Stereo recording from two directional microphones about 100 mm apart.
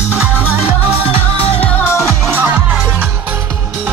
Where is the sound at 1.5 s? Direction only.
15° left (ahead or behind).